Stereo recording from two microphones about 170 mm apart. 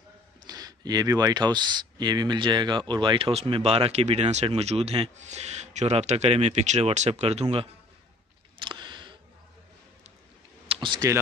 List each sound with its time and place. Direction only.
0.5 s speech: 20° right (ahead or behind)
8.5 s a sound: 25° right (ahead or behind)
10.7 s speech: 30° right (ahead or behind)